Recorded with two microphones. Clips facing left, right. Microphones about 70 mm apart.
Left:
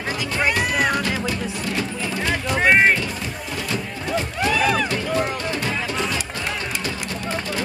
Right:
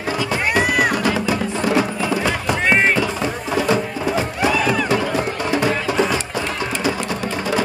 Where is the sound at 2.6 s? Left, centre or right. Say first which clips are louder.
Left 1 dB; centre.